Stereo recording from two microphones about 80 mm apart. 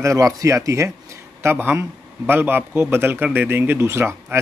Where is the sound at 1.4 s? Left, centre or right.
Right.